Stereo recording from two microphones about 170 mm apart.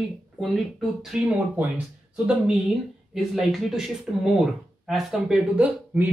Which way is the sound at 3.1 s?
Centre (ahead or behind).